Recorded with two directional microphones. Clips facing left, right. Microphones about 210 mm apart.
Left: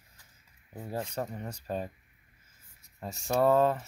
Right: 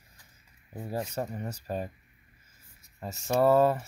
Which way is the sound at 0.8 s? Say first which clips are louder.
Right 2 dB; 10° right (ahead or behind).